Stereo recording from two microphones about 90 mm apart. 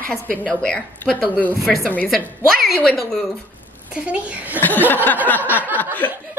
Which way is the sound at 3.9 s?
15° right (ahead or behind).